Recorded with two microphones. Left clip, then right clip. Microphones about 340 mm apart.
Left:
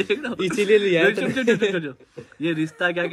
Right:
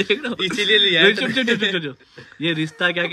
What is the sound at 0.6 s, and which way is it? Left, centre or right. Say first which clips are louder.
Speech: right 2 dB; centre.